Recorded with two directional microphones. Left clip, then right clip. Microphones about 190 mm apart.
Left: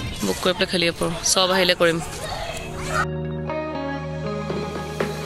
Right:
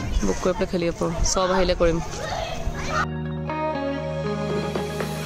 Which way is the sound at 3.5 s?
Centre (ahead or behind).